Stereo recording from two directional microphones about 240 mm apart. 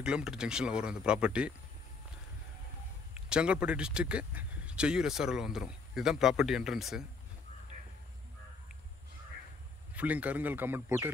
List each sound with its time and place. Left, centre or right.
0.0 s speech: centre
3.2 s speech: centre
9.9 s a man's voice: centre